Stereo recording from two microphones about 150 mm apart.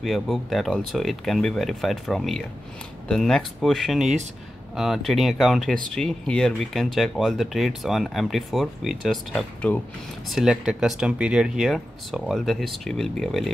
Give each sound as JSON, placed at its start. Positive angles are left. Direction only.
{"t": 0.0, "sound": "speech", "side_deg": 0}
{"t": 10.3, "sound": "speech", "side_deg": -5}